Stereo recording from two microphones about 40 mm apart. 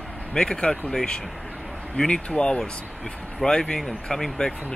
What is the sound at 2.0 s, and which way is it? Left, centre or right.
Speech, left.